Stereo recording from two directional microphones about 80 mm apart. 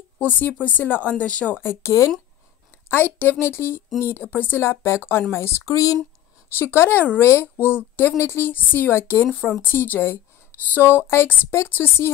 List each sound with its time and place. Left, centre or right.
0.2 s speech: left
1.6 s speech: left
2.9 s speech: left